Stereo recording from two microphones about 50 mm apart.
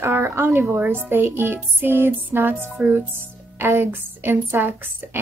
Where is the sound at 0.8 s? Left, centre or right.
Right.